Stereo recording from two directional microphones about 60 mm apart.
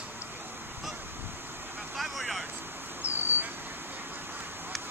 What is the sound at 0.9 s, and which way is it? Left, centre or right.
Waves, right.